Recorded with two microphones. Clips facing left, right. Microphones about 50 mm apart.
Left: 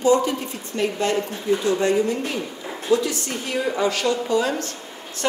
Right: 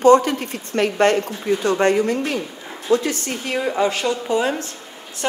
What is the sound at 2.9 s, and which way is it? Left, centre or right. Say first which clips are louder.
Speech: right 2 dB; right.